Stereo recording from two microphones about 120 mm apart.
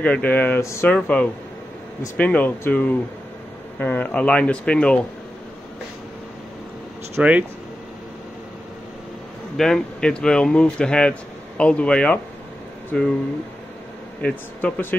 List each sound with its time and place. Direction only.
0.0 s speech: 15° left (ahead or behind)
0.8 s speech: 10° left (ahead or behind)
7.2 s speech: 10° right (ahead or behind)
9.6 s speech: 5° left (ahead or behind)
14.2 s speech: 15° left (ahead or behind)